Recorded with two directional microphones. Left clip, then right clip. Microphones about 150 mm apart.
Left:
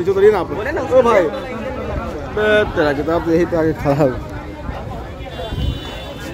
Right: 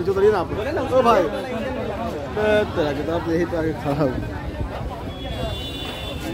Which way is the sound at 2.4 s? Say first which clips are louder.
Left 5 dB; 15° left (ahead or behind).